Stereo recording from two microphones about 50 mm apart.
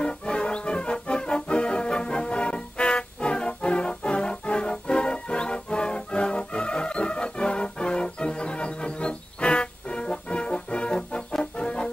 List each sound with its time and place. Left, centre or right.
0.0 s music: centre
11.3 s brass instrument: centre